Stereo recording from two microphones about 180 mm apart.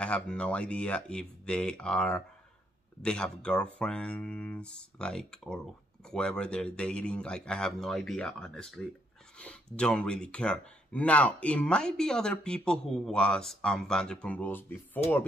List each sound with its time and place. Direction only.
0.0 s speech: 5° left (ahead or behind)
9.8 s speech: 5° left (ahead or behind)